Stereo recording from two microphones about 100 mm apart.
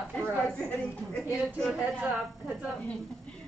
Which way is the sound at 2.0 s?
15° right (ahead or behind).